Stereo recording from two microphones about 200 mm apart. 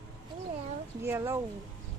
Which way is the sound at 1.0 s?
10° right (ahead or behind).